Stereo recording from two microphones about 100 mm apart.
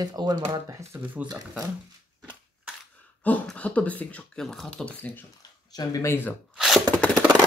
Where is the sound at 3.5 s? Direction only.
15° left (ahead or behind).